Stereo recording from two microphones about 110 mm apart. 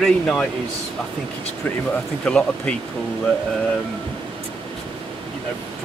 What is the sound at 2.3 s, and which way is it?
Speech, 10° left (ahead or behind).